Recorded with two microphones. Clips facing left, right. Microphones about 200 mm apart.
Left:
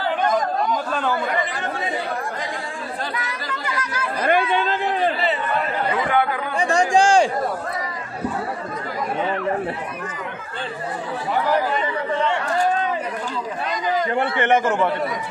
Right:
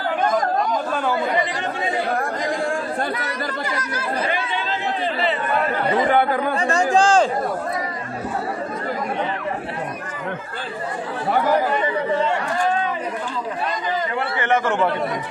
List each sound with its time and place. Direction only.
4.3 s chatter: 55° left (ahead or behind)
5.9 s speech: 40° right (ahead or behind)
6.5 s chatter: 15° left (ahead or behind)
14.4 s a man's voice: 15° left (ahead or behind)